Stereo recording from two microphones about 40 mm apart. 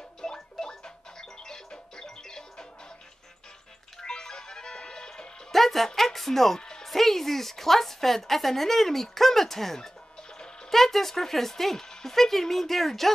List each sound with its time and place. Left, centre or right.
0.2 s music: centre
4.0 s music: centre
5.5 s music: centre
5.9 s a woman's voice: centre
6.6 s music: centre
6.9 s a woman's voice: centre